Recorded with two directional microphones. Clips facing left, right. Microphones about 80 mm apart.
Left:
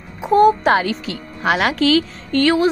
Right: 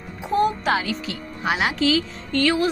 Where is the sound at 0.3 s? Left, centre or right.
Left.